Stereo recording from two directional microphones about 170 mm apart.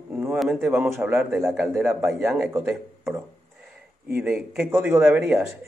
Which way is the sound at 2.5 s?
15° right (ahead or behind).